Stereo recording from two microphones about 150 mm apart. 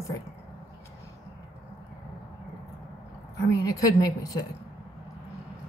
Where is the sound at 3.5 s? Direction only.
20° left (ahead or behind).